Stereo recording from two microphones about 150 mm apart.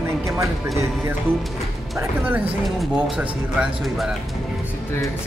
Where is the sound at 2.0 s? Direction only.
10° right (ahead or behind).